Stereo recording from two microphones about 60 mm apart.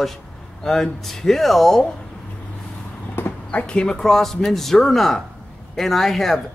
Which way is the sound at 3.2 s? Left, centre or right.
Left.